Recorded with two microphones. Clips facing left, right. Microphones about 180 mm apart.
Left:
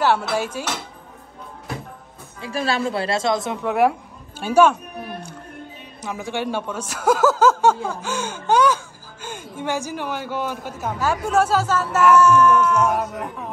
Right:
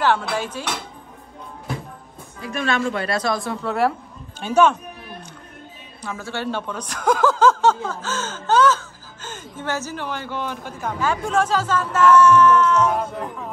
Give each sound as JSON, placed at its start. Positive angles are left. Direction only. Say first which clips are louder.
{"t": 0.0, "sound": "a man's voice", "louder": "left 1 dB", "side_deg": 10}
{"t": 2.4, "sound": "a woman's voice", "louder": "even", "side_deg": 35}
{"t": 6.0, "sound": "a man's voice", "louder": "left 2 dB", "side_deg": 15}